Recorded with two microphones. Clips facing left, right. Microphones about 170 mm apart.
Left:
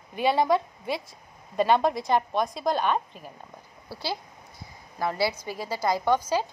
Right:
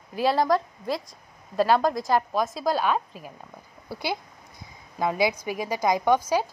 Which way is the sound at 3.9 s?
15° right (ahead or behind).